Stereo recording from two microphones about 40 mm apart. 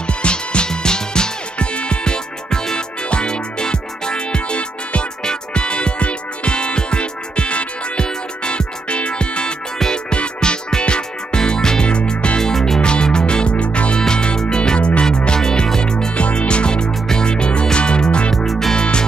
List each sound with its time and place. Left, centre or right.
0.0 s music: left
9.8 s music: centre
10.1 s music: left
12.4 s music: centre
12.8 s music: left
16.2 s music: left
18.3 s music: centre
18.8 s music: left